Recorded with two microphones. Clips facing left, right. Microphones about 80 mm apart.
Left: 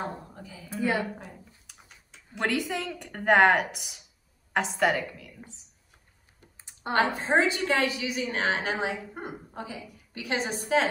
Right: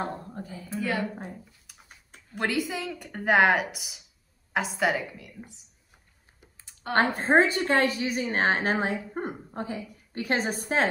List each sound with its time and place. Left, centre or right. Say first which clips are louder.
0.3 s a woman's voice: right 6 dB; right
0.7 s a woman's voice: left 2 dB; left
2.3 s speech: even; centre
6.6 s a sound: left 1 dB; left
7.2 s a woman's voice: right 3 dB; right